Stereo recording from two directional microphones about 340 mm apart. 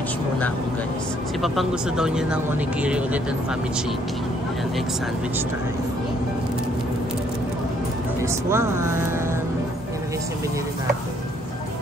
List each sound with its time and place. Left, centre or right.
1.4 s speech: centre
8.2 s speech: centre